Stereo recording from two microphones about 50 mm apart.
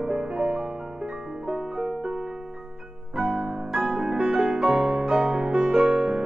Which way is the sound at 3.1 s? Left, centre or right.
Centre.